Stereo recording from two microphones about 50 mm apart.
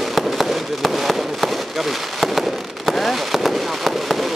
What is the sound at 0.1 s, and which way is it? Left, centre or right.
Fireworks, centre.